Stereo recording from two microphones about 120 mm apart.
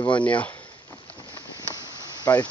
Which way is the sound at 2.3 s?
30° left (ahead or behind).